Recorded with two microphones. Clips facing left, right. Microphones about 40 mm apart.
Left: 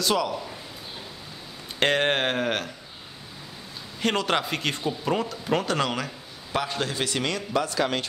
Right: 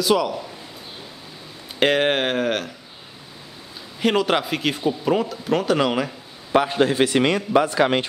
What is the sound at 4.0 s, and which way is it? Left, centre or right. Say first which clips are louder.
Speech: right 5 dB; centre.